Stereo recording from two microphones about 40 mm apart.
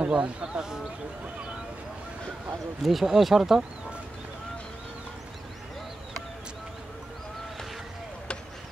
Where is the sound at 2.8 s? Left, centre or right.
Centre.